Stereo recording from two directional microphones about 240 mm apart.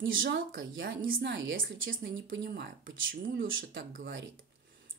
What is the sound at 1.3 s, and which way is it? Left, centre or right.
Speech, right.